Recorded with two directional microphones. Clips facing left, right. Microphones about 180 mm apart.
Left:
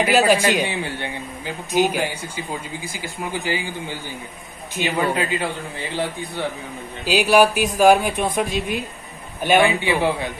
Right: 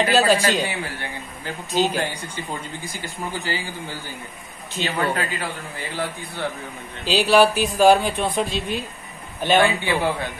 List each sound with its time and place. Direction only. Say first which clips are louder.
0.0 s a man's voice: left 1 dB; 15° left (ahead or behind)
3.2 s a man's voice: left 3 dB; 15° left (ahead or behind)